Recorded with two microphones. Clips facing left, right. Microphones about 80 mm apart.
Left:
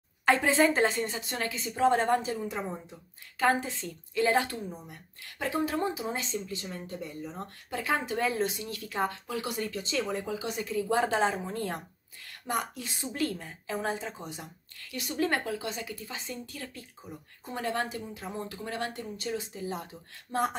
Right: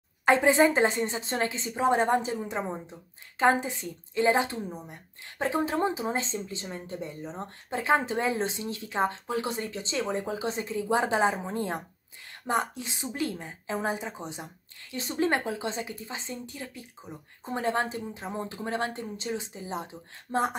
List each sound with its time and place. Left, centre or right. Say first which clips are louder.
0.2 s a woman's voice: right 3 dB; right